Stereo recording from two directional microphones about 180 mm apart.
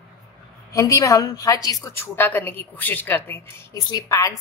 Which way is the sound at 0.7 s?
20° left (ahead or behind).